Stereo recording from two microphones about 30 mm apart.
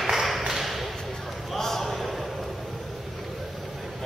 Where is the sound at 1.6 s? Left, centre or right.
Centre.